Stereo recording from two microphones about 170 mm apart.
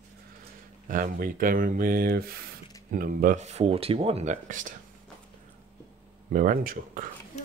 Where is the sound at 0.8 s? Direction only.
55° right (ahead or behind).